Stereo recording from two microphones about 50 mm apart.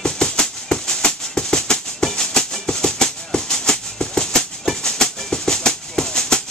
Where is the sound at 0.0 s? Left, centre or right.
Centre.